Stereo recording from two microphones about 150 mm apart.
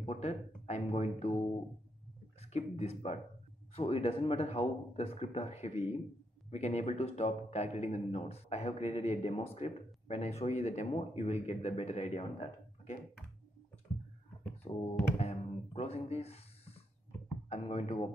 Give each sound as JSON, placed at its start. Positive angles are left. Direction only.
{"t": 0.0, "sound": "speech", "side_deg": 45}
{"t": 14.7, "sound": "a sound", "side_deg": 40}
{"t": 17.5, "sound": "speech", "side_deg": 40}